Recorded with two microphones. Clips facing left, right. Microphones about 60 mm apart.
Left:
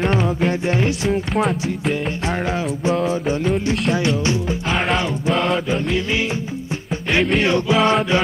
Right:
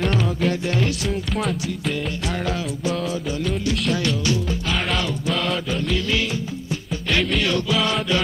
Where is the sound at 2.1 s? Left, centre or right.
Left.